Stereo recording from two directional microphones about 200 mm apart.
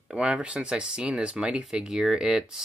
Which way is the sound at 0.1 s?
5° right (ahead or behind).